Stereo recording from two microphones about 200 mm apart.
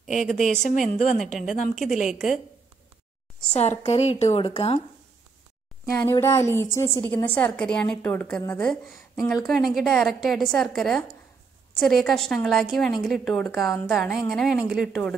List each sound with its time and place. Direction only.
0.0 s a woman's voice: centre (ahead or behind)
0.5 s a woman's voice: 40° left (ahead or behind)
2.0 s a woman's voice: centre (ahead or behind)
3.8 s a woman's voice: 30° left (ahead or behind)
5.9 s a woman's voice: 15° left (ahead or behind)